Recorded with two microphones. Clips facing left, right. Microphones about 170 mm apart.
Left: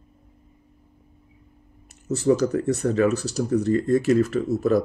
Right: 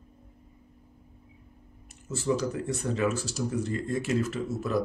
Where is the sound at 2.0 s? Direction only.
40° left (ahead or behind).